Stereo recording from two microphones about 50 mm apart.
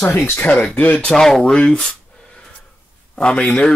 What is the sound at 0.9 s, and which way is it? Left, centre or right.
Speech, centre.